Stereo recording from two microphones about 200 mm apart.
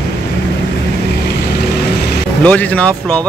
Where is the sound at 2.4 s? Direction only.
5° left (ahead or behind).